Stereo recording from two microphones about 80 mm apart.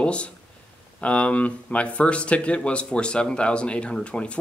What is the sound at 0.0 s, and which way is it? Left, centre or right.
Speech, centre.